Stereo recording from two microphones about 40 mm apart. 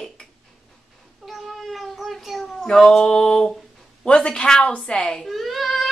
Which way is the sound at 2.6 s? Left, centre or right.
Centre.